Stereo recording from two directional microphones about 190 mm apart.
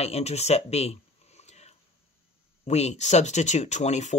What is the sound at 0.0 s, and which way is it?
Speech, 35° left (ahead or behind).